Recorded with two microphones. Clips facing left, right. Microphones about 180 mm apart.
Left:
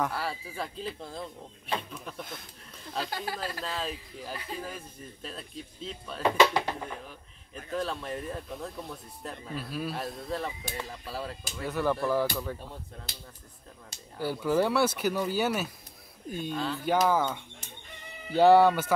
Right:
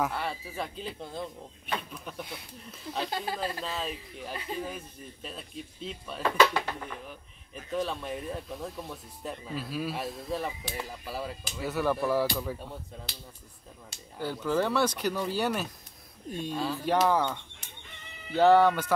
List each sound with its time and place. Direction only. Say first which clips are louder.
0.0 s speech: even; centre (ahead or behind)
6.2 s speech: left 1 dB; 20° left (ahead or behind)
7.7 s speech: right 1 dB; centre (ahead or behind)
14.2 s speech: left 2 dB; 10° left (ahead or behind)
18.3 s speech: left 1 dB; 10° left (ahead or behind)